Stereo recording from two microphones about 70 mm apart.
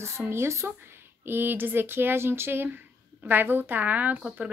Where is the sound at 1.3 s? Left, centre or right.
Right.